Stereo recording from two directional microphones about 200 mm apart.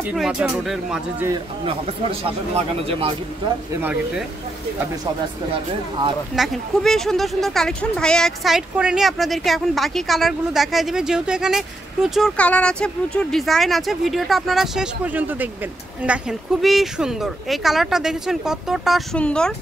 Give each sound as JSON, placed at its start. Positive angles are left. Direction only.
{"t": 0.0, "sound": "speech", "side_deg": -5}
{"t": 1.7, "sound": "speech", "side_deg": -30}
{"t": 3.8, "sound": "speech", "side_deg": -5}
{"t": 5.0, "sound": "speech", "side_deg": -25}
{"t": 6.3, "sound": "speech", "side_deg": 0}